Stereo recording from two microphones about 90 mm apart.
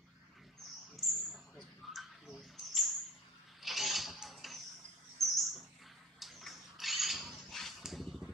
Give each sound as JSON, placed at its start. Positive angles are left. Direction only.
{"t": 0.9, "sound": "bird", "side_deg": 0}
{"t": 3.6, "sound": "mechanisms", "side_deg": 0}
{"t": 5.2, "sound": "bird", "side_deg": 0}
{"t": 6.1, "sound": "a sound", "side_deg": 0}